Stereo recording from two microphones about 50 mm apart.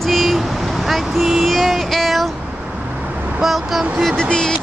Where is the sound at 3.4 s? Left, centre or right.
Centre.